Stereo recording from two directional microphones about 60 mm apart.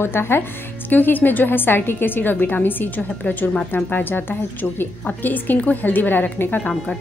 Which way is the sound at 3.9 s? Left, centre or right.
Left.